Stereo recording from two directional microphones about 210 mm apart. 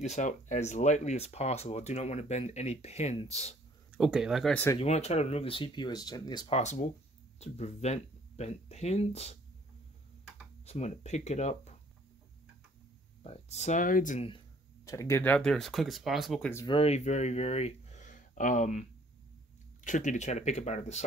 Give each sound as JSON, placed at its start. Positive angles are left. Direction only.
{"t": 0.0, "sound": "speech", "side_deg": 35}
{"t": 3.9, "sound": "speech", "side_deg": 0}
{"t": 4.7, "sound": "speech", "side_deg": 30}
{"t": 10.6, "sound": "speech", "side_deg": 30}
{"t": 13.2, "sound": "speech", "side_deg": 30}
{"t": 14.9, "sound": "speech", "side_deg": 15}
{"t": 16.6, "sound": "speech", "side_deg": 25}